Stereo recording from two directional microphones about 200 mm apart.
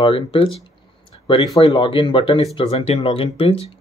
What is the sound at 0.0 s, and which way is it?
Speech, 25° left (ahead or behind).